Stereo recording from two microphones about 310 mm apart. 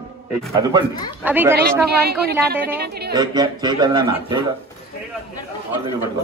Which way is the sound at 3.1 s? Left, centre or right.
Centre.